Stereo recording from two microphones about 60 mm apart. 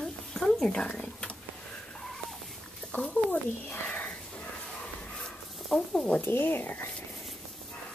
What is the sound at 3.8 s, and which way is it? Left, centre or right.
Wheeze, left.